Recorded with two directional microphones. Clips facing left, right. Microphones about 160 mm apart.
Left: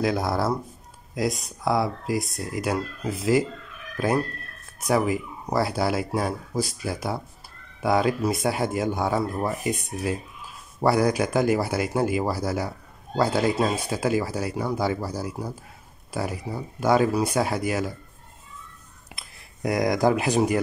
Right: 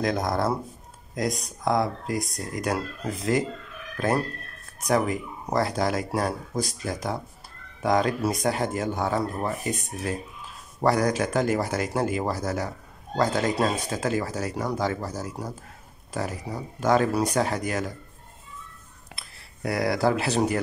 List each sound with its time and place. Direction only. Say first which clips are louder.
0.0 s speech: left 1 dB; 5° left (ahead or behind)
19.1 s speech: left 1 dB; 20° left (ahead or behind)